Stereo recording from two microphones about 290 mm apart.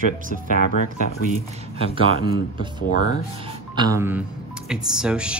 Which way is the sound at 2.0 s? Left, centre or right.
Centre.